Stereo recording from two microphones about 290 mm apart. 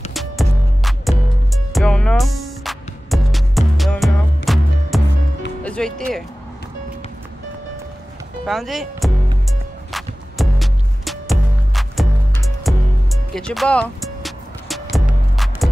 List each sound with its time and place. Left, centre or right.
0.1 s music: centre
5.6 s speech: centre
8.5 s music: centre